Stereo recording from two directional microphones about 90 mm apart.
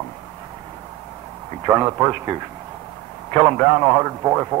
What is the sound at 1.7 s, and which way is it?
Speech, 35° right (ahead or behind).